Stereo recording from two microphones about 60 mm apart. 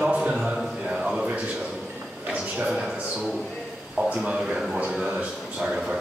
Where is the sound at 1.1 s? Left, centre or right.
Centre.